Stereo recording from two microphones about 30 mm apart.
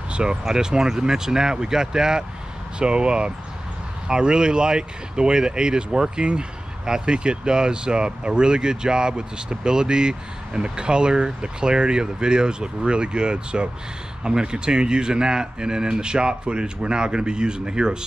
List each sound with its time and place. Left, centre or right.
0.1 s speech: right